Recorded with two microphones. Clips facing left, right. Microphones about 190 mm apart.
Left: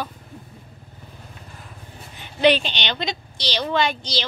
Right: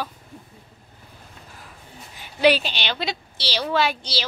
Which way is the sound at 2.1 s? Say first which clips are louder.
Left 1 dB; 5° right (ahead or behind).